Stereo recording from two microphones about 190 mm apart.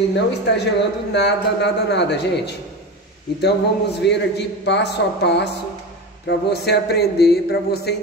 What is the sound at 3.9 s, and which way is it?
A man's voice, 65° left (ahead or behind).